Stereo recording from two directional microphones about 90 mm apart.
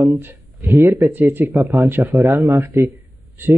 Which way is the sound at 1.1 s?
20° right (ahead or behind).